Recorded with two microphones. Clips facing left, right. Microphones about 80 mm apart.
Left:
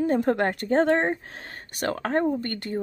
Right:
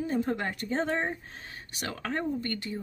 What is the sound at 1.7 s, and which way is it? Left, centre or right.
Speech, left.